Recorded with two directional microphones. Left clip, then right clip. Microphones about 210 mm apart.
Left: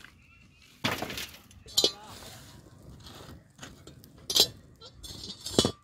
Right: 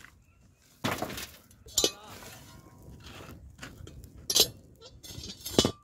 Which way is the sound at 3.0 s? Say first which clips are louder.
Right 1 dB; 25° right (ahead or behind).